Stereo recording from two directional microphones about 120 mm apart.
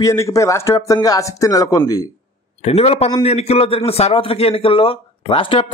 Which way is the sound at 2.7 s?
55° left (ahead or behind).